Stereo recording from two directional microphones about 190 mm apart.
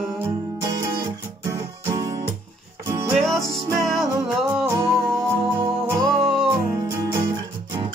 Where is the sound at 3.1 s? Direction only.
Centre (ahead or behind).